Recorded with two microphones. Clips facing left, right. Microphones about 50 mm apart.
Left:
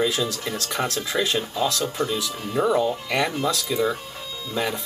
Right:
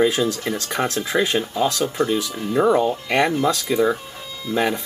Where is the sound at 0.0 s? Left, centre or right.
Right.